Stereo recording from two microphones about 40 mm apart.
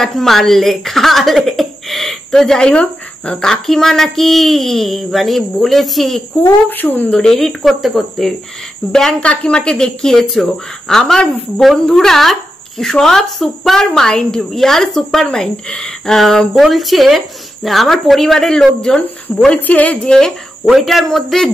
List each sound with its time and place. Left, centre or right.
0.0 s speech: centre
2.3 s speech: centre
2.7 s speech: left
3.3 s speech: centre
6.4 s a woman's voice: left
7.1 s speech: centre
9.2 s speech: left
16.2 s speech: centre
19.6 s a woman's voice: left
20.0 s speech: centre
20.6 s speech: centre